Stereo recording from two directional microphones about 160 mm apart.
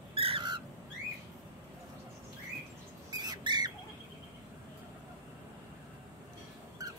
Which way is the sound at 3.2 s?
25° right (ahead or behind).